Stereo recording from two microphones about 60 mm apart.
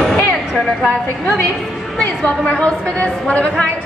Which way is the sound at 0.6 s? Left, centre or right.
Centre.